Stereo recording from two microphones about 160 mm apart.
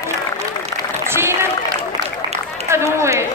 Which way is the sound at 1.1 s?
15° right (ahead or behind).